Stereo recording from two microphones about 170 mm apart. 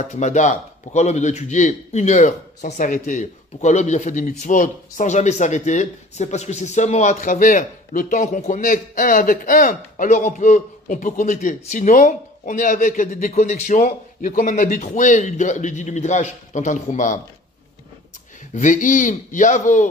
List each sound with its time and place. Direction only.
0.1 s a man's voice: 45° left (ahead or behind)
18.5 s a man's voice: 50° left (ahead or behind)